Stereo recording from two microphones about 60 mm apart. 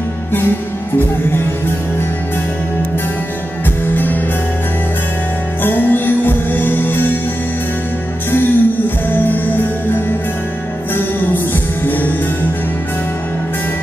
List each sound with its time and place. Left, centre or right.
0.9 s music: left
3.9 s music: left
5.6 s music: left
8.3 s music: left